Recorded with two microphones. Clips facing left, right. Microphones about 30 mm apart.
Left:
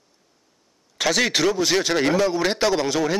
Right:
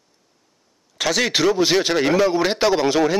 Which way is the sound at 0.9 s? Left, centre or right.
Centre.